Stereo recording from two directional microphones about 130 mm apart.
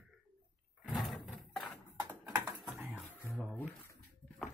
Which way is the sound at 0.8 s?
Centre (ahead or behind).